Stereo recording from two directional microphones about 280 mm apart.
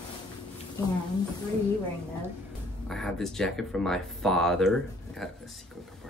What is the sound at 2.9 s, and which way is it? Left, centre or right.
Speech, centre.